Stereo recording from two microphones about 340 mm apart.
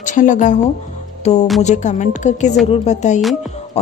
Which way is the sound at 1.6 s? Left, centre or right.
Left.